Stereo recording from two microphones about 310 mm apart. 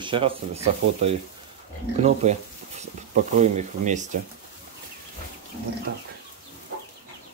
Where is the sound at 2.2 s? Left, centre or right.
Right.